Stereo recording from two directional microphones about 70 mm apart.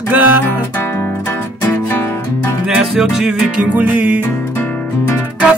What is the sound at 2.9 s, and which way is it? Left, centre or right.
Music, centre.